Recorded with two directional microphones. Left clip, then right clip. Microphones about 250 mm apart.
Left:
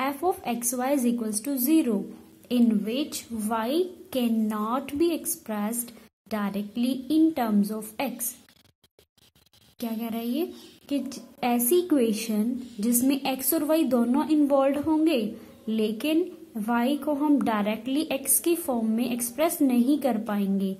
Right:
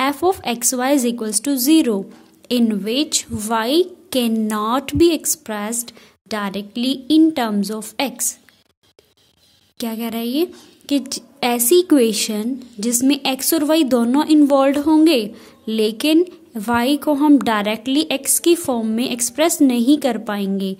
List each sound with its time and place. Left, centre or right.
0.0 s a woman's voice: right
9.8 s a woman's voice: right